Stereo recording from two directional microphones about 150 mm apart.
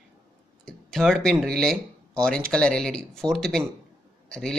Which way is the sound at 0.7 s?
5° left (ahead or behind).